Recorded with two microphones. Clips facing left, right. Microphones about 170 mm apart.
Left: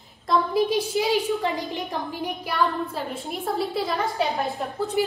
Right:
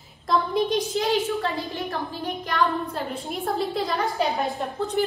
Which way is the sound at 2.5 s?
Centre (ahead or behind).